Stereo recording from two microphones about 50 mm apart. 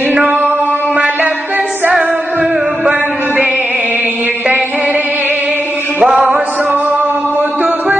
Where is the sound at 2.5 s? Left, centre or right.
Centre.